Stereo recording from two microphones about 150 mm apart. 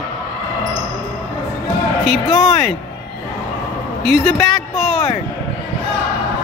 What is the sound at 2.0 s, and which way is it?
Speech, centre (ahead or behind).